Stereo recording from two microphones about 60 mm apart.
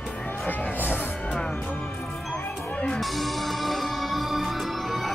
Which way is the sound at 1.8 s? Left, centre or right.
Centre.